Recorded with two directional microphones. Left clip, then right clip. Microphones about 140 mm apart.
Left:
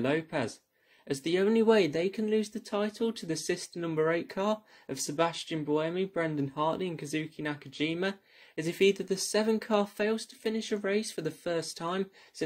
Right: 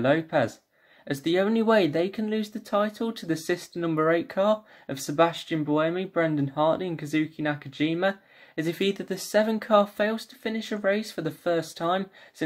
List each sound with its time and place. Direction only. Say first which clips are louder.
0.0 s speech: right 7 dB; 20° left (ahead or behind)